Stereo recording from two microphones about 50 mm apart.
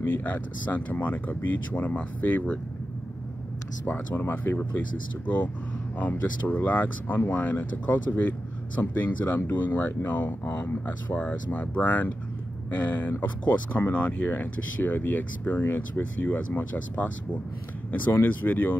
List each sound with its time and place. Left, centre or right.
0.2 s speech: left
4.2 s speech: left
4.6 s speech: left
11.1 s speech: left
13.9 s speech: left
18.1 s speech: left